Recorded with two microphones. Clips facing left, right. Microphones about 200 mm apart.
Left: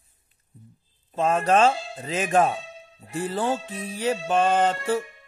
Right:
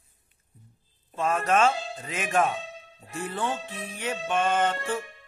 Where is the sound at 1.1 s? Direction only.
30° left (ahead or behind).